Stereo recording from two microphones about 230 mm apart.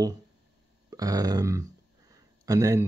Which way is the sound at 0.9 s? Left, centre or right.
Centre.